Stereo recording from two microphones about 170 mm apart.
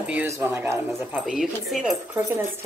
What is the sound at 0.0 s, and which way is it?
Speech, 10° right (ahead or behind).